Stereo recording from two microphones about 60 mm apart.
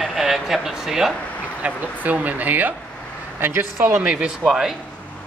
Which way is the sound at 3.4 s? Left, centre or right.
Right.